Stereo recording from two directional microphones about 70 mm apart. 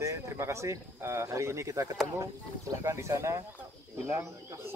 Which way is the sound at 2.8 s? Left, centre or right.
Right.